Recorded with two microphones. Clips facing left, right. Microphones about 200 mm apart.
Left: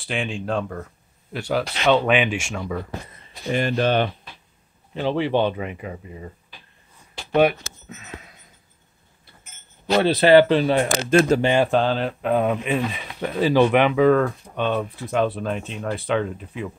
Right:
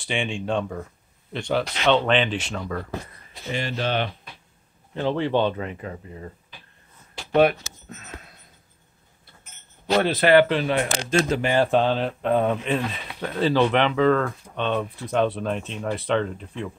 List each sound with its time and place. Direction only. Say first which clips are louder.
0.0 s speech: even; centre (ahead or behind)
3.4 s speech: left 6 dB; 50° left (ahead or behind)
4.9 s speech: left 1 dB; 15° left (ahead or behind)
7.3 s speech: even; centre (ahead or behind)
10.0 s speech: left 4 dB; 30° left (ahead or behind)
11.1 s speech: left 7 dB; 50° left (ahead or behind)
11.4 s speech: left 2 dB; 20° left (ahead or behind)
11.7 s speech: even; centre (ahead or behind)